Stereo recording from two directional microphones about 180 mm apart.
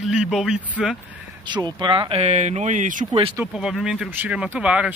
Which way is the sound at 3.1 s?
30° right (ahead or behind).